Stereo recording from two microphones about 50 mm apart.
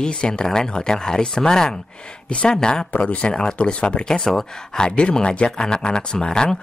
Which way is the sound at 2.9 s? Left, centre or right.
Left.